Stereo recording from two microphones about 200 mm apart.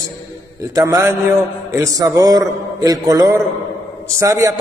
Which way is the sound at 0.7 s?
15° right (ahead or behind).